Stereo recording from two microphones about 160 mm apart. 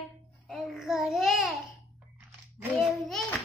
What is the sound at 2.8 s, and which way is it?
Speech, centre (ahead or behind).